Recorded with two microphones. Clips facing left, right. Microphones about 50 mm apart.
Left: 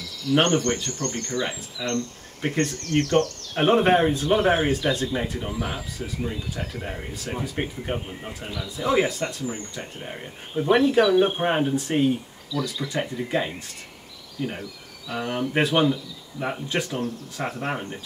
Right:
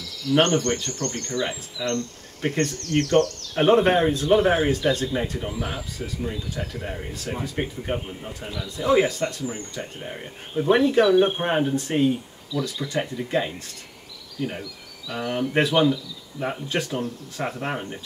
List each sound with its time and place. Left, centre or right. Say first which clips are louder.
0.4 s speech: right 1 dB; centre
0.7 s speech: even; centre
0.9 s speech: even; centre
1.4 s speech: right 1 dB; centre
15.1 s speech: right 1 dB; centre